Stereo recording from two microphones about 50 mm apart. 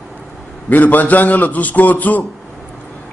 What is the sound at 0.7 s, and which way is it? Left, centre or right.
A man's voice, left.